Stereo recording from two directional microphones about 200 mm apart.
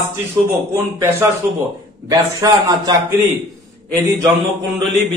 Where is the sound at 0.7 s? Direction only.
10° right (ahead or behind).